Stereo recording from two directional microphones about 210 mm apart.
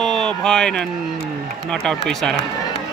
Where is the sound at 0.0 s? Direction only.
5° left (ahead or behind).